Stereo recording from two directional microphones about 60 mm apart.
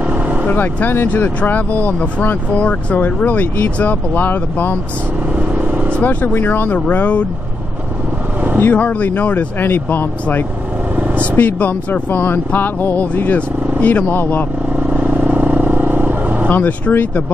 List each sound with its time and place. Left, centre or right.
0.5 s speech: left
6.2 s speech: left
8.5 s speech: left
11.1 s speech: left
14.8 s vehicle: right
16.4 s speech: left